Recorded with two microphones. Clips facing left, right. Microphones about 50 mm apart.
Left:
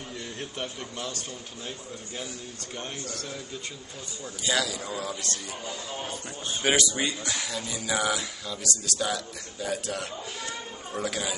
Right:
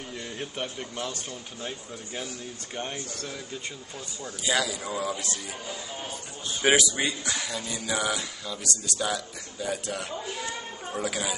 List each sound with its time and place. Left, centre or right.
0.2 s a man's voice: centre
4.4 s a man's voice: centre